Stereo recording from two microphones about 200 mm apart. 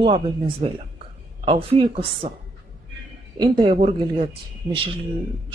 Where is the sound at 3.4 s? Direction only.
25° right (ahead or behind).